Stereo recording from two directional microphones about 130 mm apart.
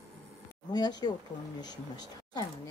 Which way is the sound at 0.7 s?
30° left (ahead or behind).